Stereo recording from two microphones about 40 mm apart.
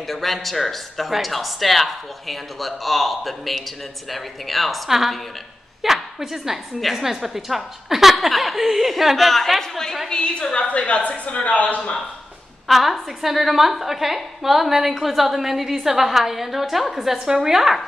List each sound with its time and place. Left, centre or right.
0.0 s a woman's voice: centre
10.0 s a woman's voice: left
12.6 s a woman's voice: centre